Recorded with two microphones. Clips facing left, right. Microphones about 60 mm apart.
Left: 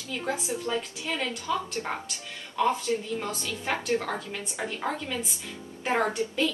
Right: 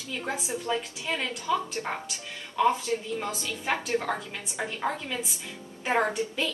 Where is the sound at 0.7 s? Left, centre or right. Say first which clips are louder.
Right 1 dB; right.